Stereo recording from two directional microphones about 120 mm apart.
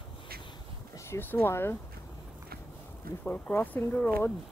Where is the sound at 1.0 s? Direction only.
20° left (ahead or behind).